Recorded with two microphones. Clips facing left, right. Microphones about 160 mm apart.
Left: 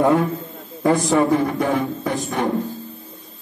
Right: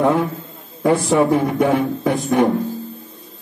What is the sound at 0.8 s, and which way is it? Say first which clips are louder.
Speech: right 1 dB; centre (ahead or behind).